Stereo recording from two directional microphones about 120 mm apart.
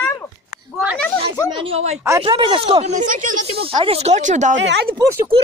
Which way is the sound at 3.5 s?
50° right (ahead or behind).